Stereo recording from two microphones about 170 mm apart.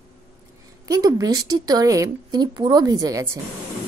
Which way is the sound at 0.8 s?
20° right (ahead or behind).